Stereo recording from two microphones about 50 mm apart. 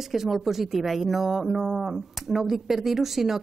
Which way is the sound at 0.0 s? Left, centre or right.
Centre.